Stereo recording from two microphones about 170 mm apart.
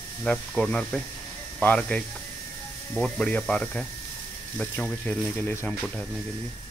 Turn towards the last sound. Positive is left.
turn(degrees=10)  # may be behind; listen again after turning